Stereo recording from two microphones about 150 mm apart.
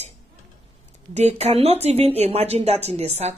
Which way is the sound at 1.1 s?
45° right (ahead or behind).